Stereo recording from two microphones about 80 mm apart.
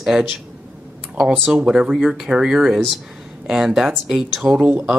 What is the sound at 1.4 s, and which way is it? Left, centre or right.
Speech, centre.